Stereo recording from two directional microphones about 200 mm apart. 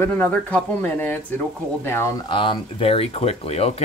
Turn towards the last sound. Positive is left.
turn(degrees=30)  # may be behind; listen again after turning